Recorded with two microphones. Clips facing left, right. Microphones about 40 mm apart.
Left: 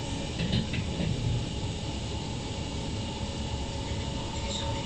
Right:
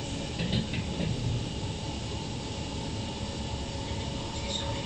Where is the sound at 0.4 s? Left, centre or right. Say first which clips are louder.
Even; centre.